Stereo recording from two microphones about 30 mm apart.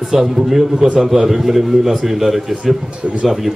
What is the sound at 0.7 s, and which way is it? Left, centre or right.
Speech, right.